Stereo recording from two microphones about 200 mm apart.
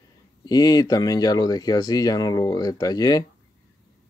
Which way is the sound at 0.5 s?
20° left (ahead or behind).